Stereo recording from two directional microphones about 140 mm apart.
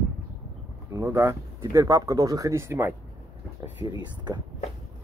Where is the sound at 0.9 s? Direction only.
20° right (ahead or behind).